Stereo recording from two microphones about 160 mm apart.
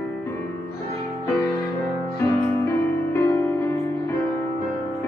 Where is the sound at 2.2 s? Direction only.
15° left (ahead or behind).